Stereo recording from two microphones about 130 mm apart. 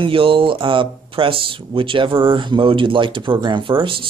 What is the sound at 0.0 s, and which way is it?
A man's voice, 45° right (ahead or behind).